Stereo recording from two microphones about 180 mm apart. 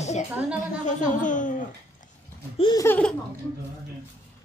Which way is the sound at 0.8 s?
45° left (ahead or behind).